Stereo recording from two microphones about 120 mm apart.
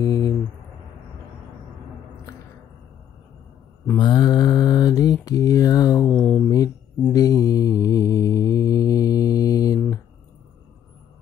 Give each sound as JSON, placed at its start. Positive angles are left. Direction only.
{"t": 0.0, "sound": "a sound", "side_deg": 30}
{"t": 4.0, "sound": "mantra", "side_deg": 35}
{"t": 6.0, "sound": "mantra", "side_deg": 10}
{"t": 7.1, "sound": "mantra", "side_deg": 30}